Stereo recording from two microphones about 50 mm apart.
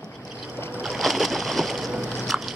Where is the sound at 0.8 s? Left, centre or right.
Centre.